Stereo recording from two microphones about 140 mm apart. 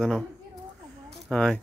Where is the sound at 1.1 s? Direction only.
Centre (ahead or behind).